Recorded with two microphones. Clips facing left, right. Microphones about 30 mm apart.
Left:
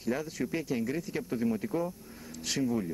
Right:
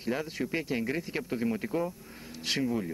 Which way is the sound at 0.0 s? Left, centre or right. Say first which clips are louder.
Even; right.